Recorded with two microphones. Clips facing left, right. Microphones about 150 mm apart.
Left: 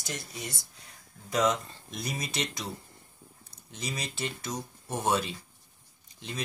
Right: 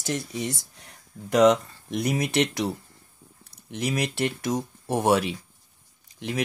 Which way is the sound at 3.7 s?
65° right (ahead or behind).